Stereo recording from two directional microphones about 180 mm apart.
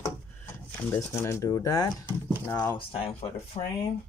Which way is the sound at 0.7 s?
10° left (ahead or behind).